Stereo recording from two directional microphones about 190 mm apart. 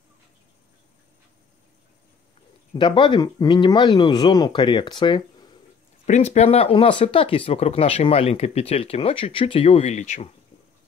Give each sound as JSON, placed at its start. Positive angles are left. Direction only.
{"t": 2.7, "sound": "speech", "side_deg": 25}
{"t": 6.0, "sound": "speech", "side_deg": 35}